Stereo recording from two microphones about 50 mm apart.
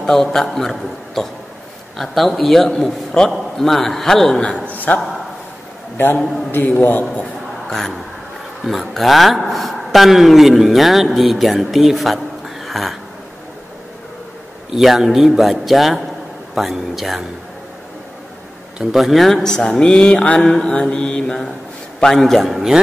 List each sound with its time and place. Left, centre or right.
0.0 s speech: centre
4.9 s a man's voice: left
6.6 s a man's voice: left
8.6 s speech: centre
14.7 s speech: centre
18.9 s speech: centre; by 20.4 s left
20.4 s speech: centre
20.7 s speech: centre
22.5 s speech: centre